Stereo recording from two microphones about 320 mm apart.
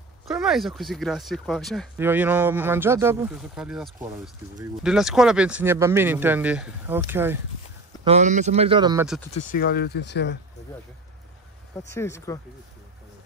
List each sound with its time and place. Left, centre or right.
0.3 s speech: centre
8.0 s speech: right
9.3 s speech: left
11.9 s speech: centre